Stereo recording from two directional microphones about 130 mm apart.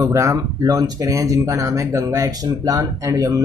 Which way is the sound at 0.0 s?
25° right (ahead or behind).